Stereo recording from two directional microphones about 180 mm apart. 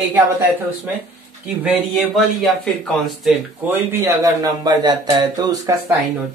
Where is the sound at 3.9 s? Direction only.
15° right (ahead or behind).